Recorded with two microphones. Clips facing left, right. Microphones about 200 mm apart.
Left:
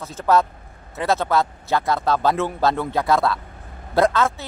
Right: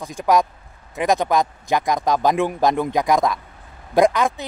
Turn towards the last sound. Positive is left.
turn(degrees=-15)  # may be behind; listen again after turning